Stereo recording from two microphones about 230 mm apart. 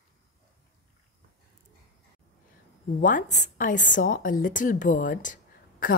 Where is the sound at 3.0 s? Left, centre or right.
Left.